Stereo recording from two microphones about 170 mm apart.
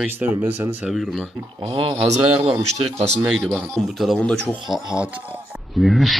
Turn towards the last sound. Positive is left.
turn(degrees=0)  # may be behind; listen again after turning